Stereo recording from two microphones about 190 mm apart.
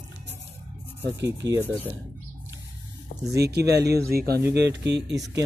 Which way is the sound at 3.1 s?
50° left (ahead or behind).